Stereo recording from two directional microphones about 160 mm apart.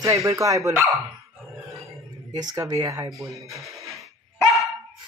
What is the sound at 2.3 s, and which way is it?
Speech, 25° right (ahead or behind).